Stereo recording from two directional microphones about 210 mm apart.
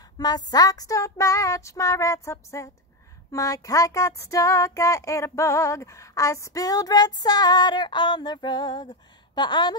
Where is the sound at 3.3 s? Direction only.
15° left (ahead or behind).